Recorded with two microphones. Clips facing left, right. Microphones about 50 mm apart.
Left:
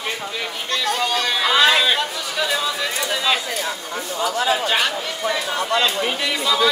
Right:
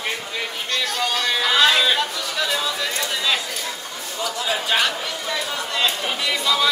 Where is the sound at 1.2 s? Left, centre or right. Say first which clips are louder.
Even; centre.